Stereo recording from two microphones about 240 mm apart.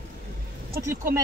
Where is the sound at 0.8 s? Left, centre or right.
Centre.